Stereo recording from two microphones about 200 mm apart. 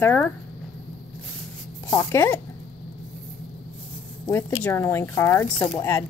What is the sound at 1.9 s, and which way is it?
Speech, 15° left (ahead or behind).